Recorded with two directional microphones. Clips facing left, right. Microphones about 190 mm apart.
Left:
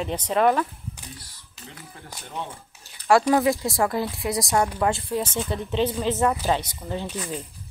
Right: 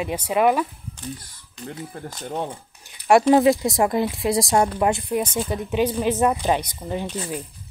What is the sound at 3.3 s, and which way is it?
Speech, 20° right (ahead or behind).